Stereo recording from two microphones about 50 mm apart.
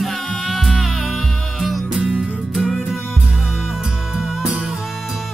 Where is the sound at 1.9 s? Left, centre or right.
Right.